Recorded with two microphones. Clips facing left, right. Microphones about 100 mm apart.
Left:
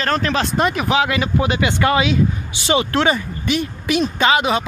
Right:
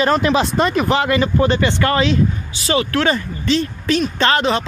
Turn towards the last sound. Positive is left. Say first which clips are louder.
# even
turn(degrees=10)  # may be behind; listen again after turning